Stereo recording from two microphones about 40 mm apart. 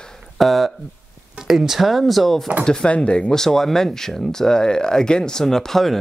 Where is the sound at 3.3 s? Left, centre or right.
Centre.